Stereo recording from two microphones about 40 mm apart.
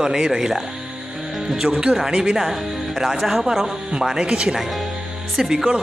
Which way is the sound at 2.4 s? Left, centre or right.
Centre.